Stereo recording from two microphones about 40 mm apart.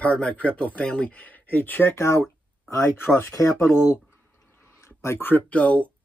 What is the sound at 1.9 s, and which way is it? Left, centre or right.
Speech, left.